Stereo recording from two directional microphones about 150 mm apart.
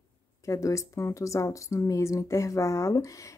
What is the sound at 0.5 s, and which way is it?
Speech, 20° left (ahead or behind).